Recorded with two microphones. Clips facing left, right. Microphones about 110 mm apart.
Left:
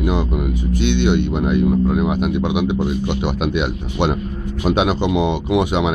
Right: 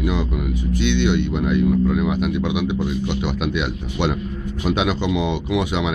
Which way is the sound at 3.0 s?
50° left (ahead or behind).